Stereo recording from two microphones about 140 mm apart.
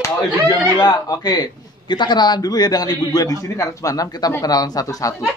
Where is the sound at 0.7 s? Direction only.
30° left (ahead or behind).